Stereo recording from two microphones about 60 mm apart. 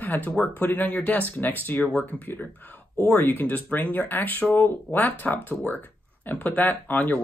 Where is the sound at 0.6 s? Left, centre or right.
Left.